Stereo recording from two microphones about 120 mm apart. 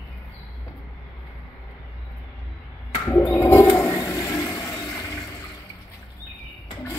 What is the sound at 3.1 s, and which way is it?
Toilet flush, 25° left (ahead or behind).